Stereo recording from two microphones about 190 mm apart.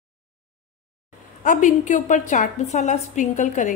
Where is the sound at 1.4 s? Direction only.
45° left (ahead or behind).